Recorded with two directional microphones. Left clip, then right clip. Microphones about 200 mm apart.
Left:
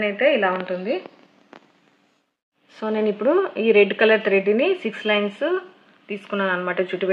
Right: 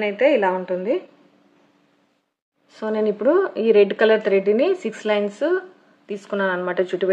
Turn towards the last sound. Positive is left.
turn(degrees=-20)  # may be behind; listen again after turning